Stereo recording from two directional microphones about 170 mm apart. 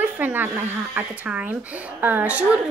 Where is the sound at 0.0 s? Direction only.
10° right (ahead or behind).